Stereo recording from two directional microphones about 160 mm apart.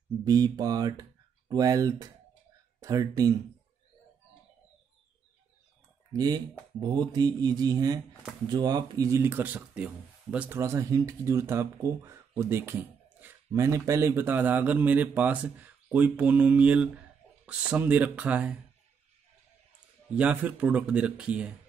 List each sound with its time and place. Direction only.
0.2 s speech: 25° right (ahead or behind)
6.1 s speech: 25° right (ahead or behind); by 10.6 s 10° right (ahead or behind)
10.6 s speech: 20° right (ahead or behind)
20.2 s speech: 10° right (ahead or behind)